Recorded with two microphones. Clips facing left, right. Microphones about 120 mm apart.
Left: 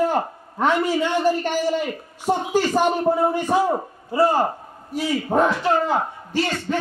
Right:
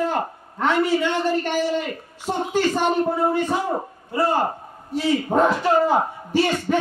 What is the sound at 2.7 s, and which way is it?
Speech, 20° left (ahead or behind).